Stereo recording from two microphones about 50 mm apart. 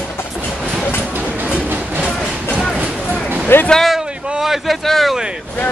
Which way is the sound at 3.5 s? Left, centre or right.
Left.